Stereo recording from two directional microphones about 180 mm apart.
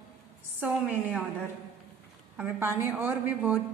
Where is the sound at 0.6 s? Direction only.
10° right (ahead or behind).